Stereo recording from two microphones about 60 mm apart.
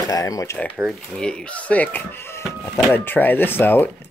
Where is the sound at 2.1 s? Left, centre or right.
Left.